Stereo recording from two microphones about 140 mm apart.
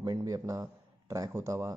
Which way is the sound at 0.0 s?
30° right (ahead or behind).